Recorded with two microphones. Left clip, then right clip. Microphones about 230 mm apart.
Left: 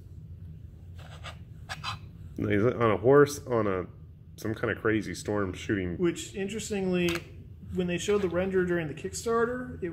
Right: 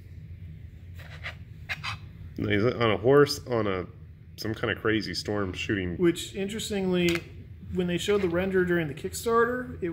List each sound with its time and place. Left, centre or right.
1.9 s speech: centre
5.9 s speech: right